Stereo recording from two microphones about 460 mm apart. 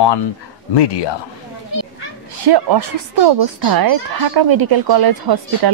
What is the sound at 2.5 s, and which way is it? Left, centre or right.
Speech, right.